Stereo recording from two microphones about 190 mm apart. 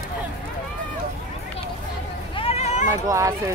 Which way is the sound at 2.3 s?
30° left (ahead or behind).